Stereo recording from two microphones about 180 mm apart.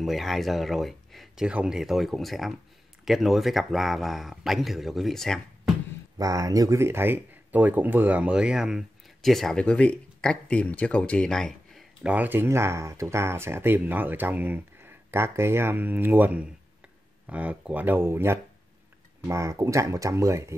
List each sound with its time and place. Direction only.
0.0 s speech: centre (ahead or behind)
6.1 s speech: 20° right (ahead or behind)